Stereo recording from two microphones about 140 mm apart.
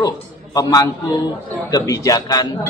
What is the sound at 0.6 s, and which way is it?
A man's voice, 25° left (ahead or behind).